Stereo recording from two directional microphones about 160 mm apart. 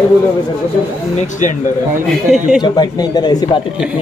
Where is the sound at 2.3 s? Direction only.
Centre (ahead or behind).